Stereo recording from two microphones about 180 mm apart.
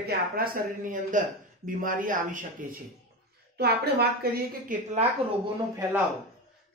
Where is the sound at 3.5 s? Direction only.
65° right (ahead or behind).